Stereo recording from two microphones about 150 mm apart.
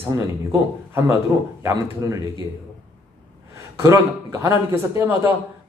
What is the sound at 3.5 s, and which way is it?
A man's voice, 20° right (ahead or behind).